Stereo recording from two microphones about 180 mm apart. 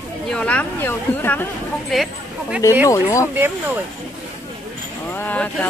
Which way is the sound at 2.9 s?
15° left (ahead or behind).